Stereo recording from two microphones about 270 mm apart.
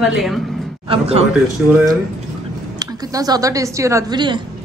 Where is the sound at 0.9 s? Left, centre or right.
Right.